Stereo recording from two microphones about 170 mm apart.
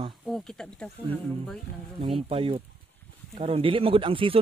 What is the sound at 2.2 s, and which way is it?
Speech, 35° right (ahead or behind).